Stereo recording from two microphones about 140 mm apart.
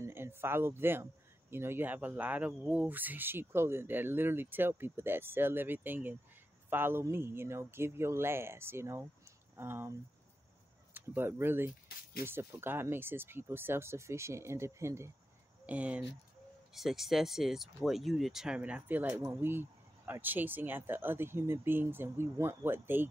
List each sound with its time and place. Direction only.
0.0 s speech: 15° right (ahead or behind)